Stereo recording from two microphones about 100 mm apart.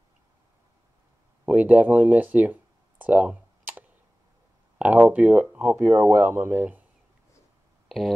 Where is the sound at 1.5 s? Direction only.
15° right (ahead or behind).